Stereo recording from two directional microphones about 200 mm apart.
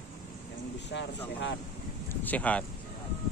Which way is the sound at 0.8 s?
60° left (ahead or behind).